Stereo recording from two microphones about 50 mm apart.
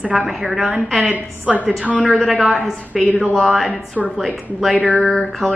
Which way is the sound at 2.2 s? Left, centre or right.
Centre.